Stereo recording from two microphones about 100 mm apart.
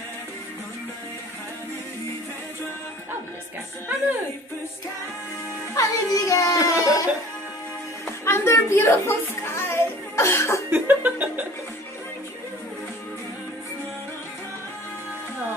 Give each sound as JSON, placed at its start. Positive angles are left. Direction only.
{"t": 5.8, "sound": "speech", "side_deg": 35}
{"t": 8.3, "sound": "music", "side_deg": 25}
{"t": 10.7, "sound": "chuckle", "side_deg": -20}